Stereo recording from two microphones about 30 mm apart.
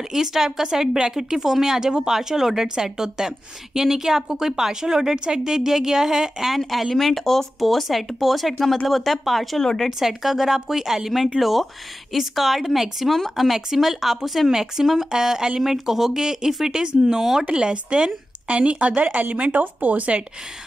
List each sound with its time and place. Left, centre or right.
0.1 s a woman's voice: centre
6.7 s speech: centre
9.6 s speech: centre
9.8 s a woman's voice: centre
14.5 s a woman's voice: centre
16.8 s a woman's voice: right
18.8 s speech: right
19.3 s speech: right